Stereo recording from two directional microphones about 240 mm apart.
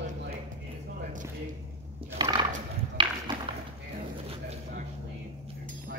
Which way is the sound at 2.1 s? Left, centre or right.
Centre.